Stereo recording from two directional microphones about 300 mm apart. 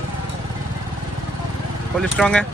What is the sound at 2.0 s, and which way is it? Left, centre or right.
Speech, centre.